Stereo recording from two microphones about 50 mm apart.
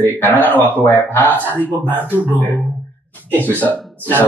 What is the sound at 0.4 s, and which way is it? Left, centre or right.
Speech, left.